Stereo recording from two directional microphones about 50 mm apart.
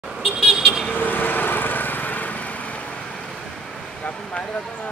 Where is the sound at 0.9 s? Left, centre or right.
Left.